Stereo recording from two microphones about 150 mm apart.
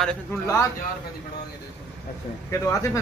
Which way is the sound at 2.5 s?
20° left (ahead or behind).